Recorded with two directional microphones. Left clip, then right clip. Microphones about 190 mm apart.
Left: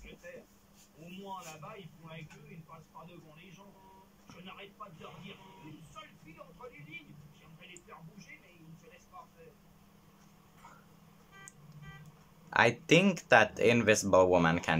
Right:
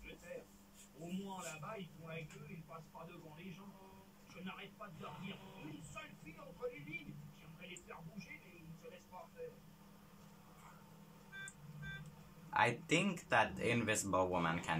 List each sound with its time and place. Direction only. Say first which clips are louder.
12.5 s speech: left 9 dB; 50° left (ahead or behind)